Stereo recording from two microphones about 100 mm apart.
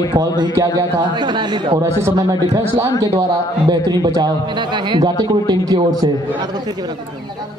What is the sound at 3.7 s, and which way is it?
A man's voice, 45° right (ahead or behind).